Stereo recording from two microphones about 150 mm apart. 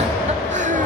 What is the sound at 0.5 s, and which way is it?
Music, 55° right (ahead or behind).